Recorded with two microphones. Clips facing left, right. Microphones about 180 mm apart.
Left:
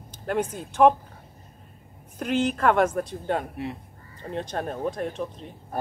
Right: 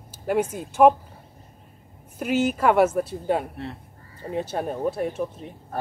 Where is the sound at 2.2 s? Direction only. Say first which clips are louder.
Right 2 dB; 10° right (ahead or behind).